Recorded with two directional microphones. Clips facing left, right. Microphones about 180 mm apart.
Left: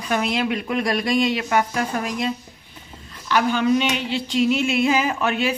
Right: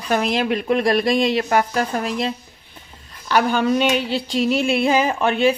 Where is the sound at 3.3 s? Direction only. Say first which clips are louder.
Right 1 dB; 45° right (ahead or behind).